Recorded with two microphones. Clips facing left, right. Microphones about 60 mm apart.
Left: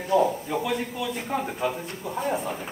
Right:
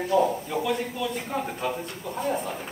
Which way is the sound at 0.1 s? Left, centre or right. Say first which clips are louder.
Left 2 dB; centre.